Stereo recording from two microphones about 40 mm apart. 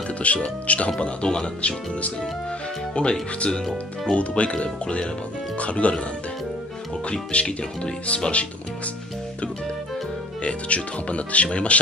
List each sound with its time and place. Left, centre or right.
0.2 s speech: left
2.9 s speech: left
7.1 s speech: left
10.4 s speech: left